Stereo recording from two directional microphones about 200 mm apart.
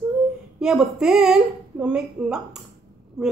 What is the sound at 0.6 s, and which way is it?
Speech, 5° right (ahead or behind).